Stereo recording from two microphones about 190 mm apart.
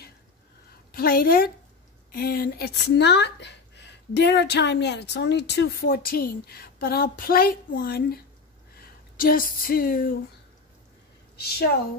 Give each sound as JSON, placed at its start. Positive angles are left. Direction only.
{"t": 0.9, "sound": "a woman's voice", "side_deg": 50}